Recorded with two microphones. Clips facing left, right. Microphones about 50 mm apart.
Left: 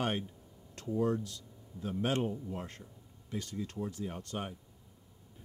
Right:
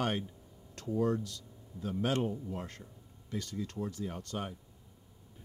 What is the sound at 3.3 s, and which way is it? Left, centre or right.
Speech, left.